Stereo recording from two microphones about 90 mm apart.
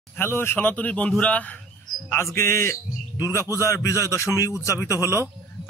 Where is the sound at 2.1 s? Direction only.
30° left (ahead or behind).